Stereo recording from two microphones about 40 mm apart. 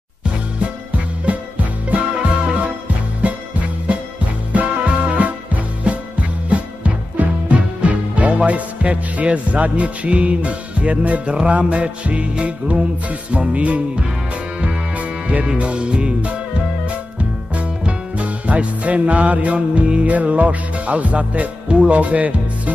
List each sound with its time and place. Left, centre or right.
0.6 s music: right
3.2 s music: right